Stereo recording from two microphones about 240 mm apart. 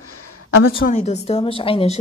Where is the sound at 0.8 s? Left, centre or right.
Left.